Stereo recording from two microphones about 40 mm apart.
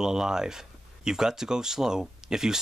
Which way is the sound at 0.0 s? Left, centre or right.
Centre.